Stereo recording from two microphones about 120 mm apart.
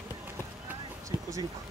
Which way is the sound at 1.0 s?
25° right (ahead or behind).